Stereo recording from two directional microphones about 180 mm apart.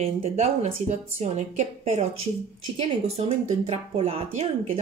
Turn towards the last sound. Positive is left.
turn(degrees=-35)  # may be behind; listen again after turning